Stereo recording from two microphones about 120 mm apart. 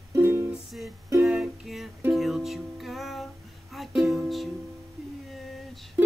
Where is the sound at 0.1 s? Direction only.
20° right (ahead or behind).